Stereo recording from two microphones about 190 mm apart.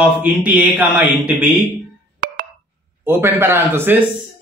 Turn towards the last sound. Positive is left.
turn(degrees=-10)  # may be behind; listen again after turning